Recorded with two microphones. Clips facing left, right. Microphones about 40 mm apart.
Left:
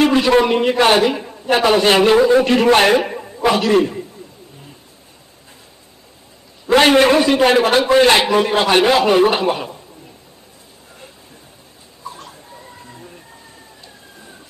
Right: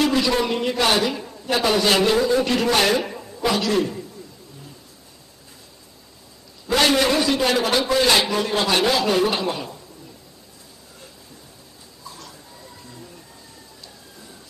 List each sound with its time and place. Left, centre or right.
0.0 s a man's voice: left
6.7 s a man's voice: left
12.0 s bird: left